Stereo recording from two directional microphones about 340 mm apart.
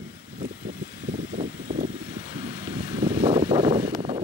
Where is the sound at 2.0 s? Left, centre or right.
Centre.